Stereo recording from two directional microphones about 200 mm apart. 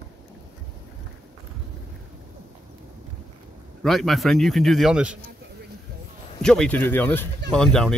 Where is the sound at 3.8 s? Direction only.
Centre (ahead or behind).